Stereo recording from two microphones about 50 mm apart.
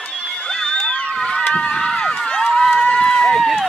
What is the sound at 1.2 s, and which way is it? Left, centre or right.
Speech, centre.